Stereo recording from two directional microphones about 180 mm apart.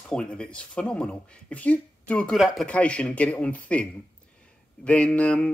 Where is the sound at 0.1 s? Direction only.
5° left (ahead or behind).